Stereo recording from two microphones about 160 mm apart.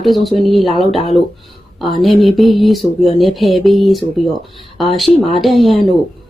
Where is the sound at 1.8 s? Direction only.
Centre (ahead or behind).